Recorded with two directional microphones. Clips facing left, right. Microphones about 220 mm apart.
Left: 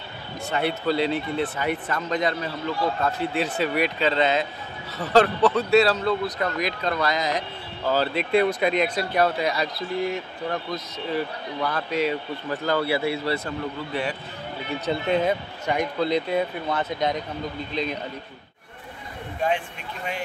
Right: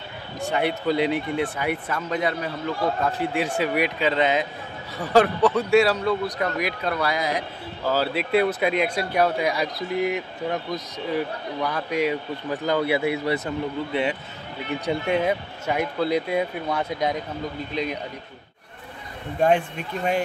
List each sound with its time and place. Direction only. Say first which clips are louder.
0.4 s a man's voice: right 2 dB; 15° right (ahead or behind)
14.9 s a man's voice: even; 10° right (ahead or behind)